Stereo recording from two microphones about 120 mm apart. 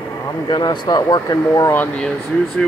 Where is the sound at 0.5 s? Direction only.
35° left (ahead or behind).